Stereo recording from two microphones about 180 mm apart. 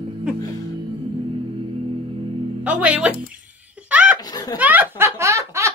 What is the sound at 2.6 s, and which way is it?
Speech, 5° right (ahead or behind).